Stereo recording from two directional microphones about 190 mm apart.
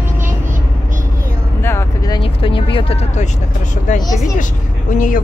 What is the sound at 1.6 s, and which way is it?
Vehicle, 15° left (ahead or behind).